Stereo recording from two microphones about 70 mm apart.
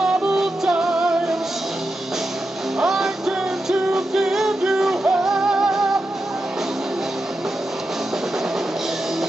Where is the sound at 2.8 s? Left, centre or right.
Centre.